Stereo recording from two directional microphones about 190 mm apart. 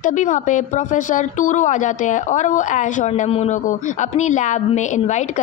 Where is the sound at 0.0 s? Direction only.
40° left (ahead or behind).